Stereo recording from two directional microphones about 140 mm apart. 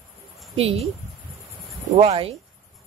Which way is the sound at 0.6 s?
45° right (ahead or behind).